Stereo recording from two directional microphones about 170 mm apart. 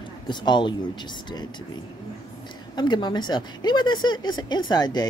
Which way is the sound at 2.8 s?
25° left (ahead or behind).